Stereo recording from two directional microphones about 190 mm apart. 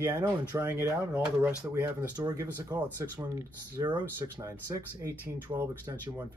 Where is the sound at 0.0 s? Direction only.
15° right (ahead or behind).